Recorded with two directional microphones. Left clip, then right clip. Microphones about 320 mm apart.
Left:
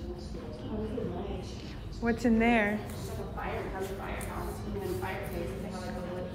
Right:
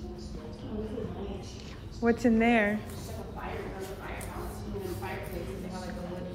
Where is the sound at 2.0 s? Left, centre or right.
Centre.